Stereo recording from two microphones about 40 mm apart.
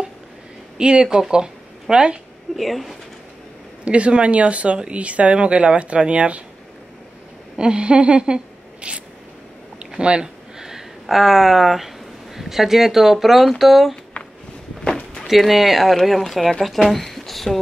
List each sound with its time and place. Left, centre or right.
0.7 s speech: right
2.5 s speech: centre
3.8 s speech: right
7.5 s a woman's voice: right
10.6 s a sound: centre
12.4 s speech: centre
14.2 s a sound: left
15.2 s speech: centre
16.9 s a sound: centre